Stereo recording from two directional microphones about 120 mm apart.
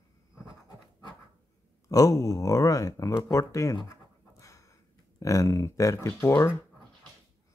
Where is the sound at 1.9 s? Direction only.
30° left (ahead or behind).